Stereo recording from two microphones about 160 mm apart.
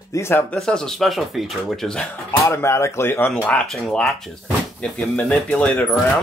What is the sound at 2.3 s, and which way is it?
Speech, 15° left (ahead or behind).